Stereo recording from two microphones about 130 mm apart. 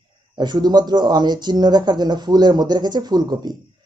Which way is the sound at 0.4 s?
35° right (ahead or behind).